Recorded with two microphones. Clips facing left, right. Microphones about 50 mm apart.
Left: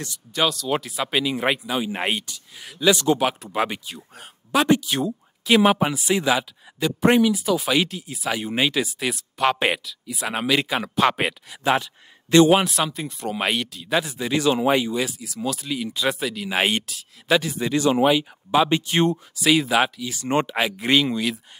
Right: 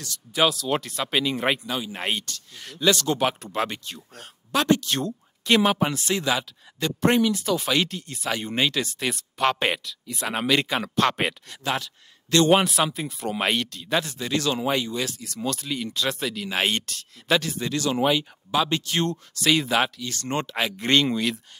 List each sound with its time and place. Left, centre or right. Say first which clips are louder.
0.3 s speech: even; centre
1.8 s speech: left 4 dB; centre
11.6 s a man's voice: left 6 dB; left
12.4 s speech: left 1 dB; centre
18.6 s speech: left 5 dB; centre
19.3 s speech: left 1 dB; centre